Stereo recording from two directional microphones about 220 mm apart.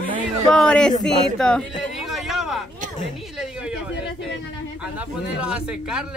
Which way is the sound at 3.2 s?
Centre (ahead or behind).